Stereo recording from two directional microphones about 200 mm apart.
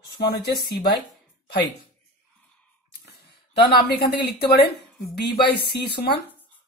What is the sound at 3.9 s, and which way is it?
Speech, 55° left (ahead or behind).